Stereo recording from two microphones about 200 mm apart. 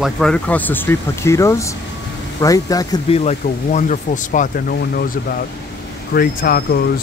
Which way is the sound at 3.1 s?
35° left (ahead or behind).